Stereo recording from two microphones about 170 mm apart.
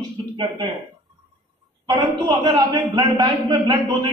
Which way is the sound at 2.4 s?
20° right (ahead or behind).